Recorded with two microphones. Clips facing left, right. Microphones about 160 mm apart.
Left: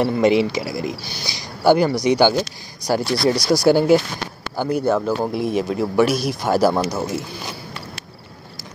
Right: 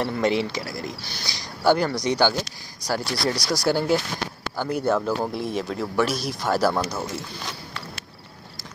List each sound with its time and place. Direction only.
0.0 s speech: 10° left (ahead or behind)
4.6 s speech: centre (ahead or behind); by 6.8 s 20° left (ahead or behind)
6.8 s a sound: 5° left (ahead or behind)